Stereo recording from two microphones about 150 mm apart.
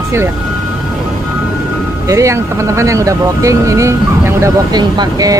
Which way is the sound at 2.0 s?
20° right (ahead or behind).